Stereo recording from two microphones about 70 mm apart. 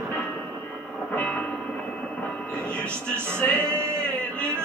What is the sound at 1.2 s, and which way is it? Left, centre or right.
Train, left.